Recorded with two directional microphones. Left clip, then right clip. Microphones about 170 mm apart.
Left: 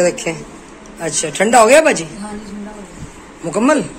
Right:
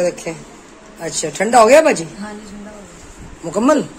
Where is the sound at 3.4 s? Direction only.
20° right (ahead or behind).